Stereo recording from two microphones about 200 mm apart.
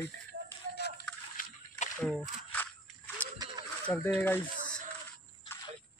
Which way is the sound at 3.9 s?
10° left (ahead or behind).